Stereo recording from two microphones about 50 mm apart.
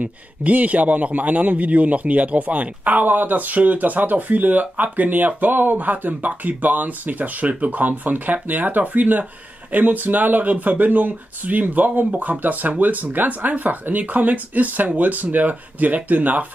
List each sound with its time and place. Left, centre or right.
0.0 s a man's voice: right